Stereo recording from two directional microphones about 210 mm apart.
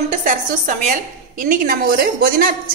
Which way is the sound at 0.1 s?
40° right (ahead or behind).